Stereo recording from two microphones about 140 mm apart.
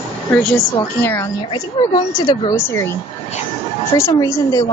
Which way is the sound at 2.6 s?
15° left (ahead or behind).